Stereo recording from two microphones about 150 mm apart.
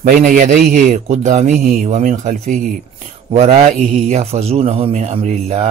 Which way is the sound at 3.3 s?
45° right (ahead or behind).